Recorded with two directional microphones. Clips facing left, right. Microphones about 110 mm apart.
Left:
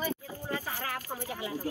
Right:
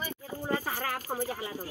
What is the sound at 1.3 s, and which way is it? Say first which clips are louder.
Speech: right 1 dB; 35° right (ahead or behind).